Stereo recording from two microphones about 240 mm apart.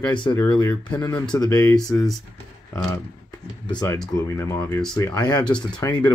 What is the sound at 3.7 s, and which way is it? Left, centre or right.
Speech, centre.